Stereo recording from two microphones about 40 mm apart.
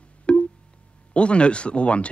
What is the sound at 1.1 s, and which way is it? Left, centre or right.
Speech, left.